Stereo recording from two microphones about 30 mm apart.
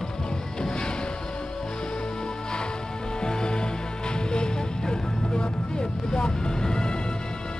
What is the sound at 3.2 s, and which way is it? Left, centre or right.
Music, left.